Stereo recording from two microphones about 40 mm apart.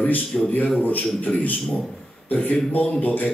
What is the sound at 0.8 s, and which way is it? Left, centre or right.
Speech, left.